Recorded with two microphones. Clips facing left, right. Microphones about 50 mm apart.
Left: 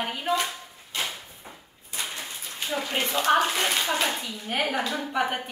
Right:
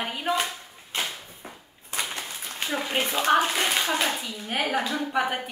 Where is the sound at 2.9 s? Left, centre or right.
Centre.